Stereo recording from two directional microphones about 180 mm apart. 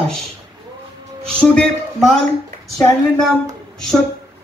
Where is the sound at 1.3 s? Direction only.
5° left (ahead or behind).